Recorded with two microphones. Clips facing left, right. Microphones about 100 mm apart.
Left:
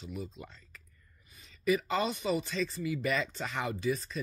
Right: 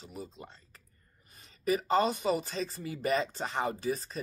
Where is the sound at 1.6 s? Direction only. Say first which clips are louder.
Right 2 dB; 40° right (ahead or behind).